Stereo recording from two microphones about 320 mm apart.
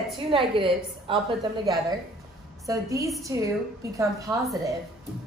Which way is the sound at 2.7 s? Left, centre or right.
Centre.